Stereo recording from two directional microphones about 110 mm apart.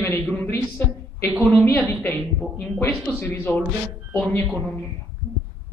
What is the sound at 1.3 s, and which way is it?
Speech, centre (ahead or behind).